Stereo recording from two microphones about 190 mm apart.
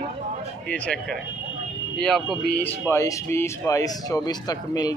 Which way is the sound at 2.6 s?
10° left (ahead or behind).